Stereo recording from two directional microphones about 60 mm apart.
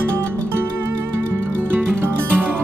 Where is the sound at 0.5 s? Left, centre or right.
Right.